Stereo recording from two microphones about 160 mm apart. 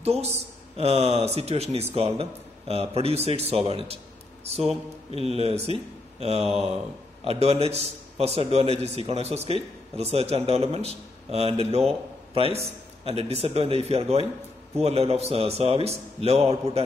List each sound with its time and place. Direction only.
0.0 s a man's voice: 40° right (ahead or behind)